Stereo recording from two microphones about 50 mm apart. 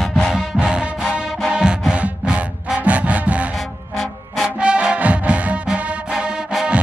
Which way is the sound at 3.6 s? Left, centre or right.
Centre.